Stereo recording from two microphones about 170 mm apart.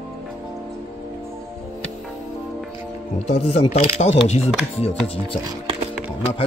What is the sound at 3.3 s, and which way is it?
Speech, 40° left (ahead or behind).